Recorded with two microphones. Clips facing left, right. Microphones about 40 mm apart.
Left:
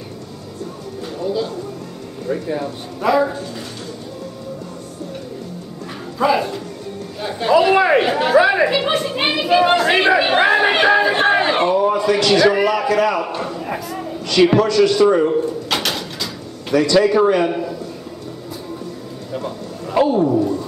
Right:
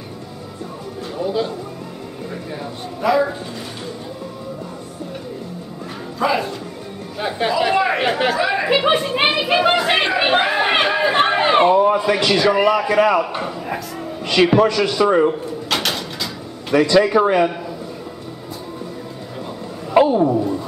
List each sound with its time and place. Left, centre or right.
1.1 s music: centre
3.0 s a man's voice: centre
6.1 s speech: centre
7.2 s chatter: centre
7.7 s chatter: centre
8.0 s speech: centre
10.4 s a sound: centre
12.4 s a man's voice: centre
12.8 s speech: centre
14.4 s a man's voice: right
15.7 s bird: centre
16.9 s a man's voice: centre
20.1 s a man's voice: centre